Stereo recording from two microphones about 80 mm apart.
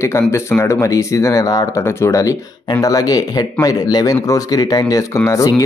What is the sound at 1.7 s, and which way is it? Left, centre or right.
Speech, left.